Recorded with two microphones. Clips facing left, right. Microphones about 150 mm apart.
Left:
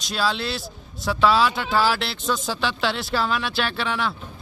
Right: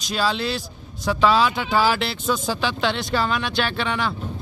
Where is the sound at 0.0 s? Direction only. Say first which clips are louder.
Right 2 dB; centre (ahead or behind).